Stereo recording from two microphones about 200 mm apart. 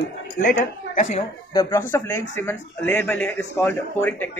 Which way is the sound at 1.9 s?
10° left (ahead or behind).